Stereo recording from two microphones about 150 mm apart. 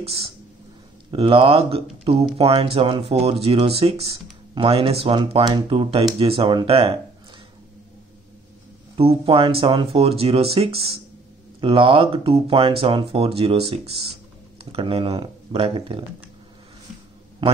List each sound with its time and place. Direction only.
0.0 s speech: 40° right (ahead or behind)
8.9 s speech: 40° right (ahead or behind)